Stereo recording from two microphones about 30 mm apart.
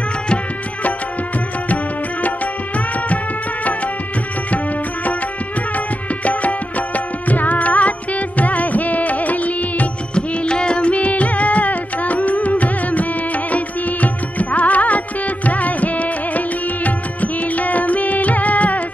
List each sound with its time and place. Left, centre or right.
7.2 s music: left
10.1 s music: left